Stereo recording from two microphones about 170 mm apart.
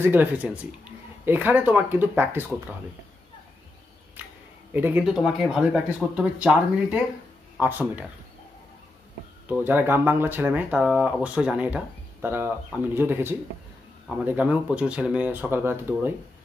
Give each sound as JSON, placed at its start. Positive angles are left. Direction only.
{"t": 0.0, "sound": "speech", "side_deg": -10}
{"t": 4.7, "sound": "speech", "side_deg": -10}
{"t": 9.5, "sound": "speech", "side_deg": -10}